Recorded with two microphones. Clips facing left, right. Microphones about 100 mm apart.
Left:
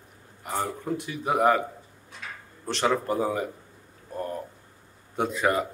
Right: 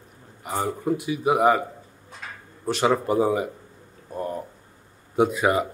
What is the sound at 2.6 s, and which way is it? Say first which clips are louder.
Speech: right 4 dB; 10° right (ahead or behind).